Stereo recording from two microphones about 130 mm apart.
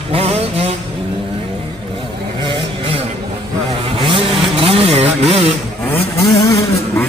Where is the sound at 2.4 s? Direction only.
40° right (ahead or behind).